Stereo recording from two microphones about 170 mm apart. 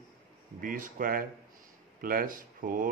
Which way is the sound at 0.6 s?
55° right (ahead or behind).